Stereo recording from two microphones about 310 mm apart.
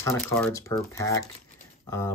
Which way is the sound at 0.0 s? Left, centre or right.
Centre.